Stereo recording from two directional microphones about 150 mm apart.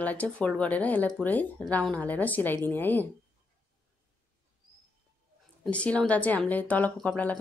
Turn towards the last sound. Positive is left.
turn(degrees=10)  # may be behind; listen again after turning